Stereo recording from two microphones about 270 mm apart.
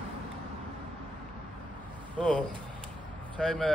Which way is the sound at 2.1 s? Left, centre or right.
Centre.